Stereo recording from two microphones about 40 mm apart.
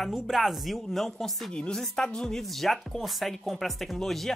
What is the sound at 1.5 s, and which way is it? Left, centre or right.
Speech, left.